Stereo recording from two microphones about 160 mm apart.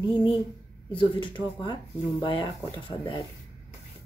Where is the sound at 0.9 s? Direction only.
30° left (ahead or behind).